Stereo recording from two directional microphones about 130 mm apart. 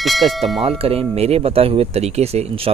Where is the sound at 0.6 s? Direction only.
45° right (ahead or behind).